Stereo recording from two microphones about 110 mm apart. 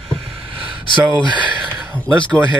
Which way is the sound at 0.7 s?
45° right (ahead or behind).